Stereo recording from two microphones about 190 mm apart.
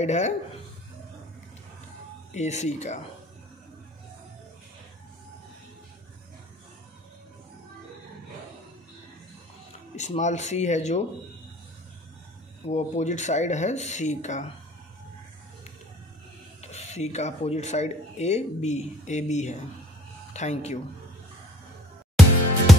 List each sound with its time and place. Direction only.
0.0 s speech: 35° left (ahead or behind)
2.3 s speech: 35° left (ahead or behind)
9.9 s speech: 40° left (ahead or behind)
12.6 s speech: 35° left (ahead or behind)
16.6 s speech: 35° left (ahead or behind)
22.7 s music: centre (ahead or behind)